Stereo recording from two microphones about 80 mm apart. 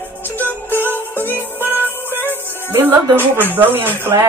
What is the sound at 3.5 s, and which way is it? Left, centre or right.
Speech, right.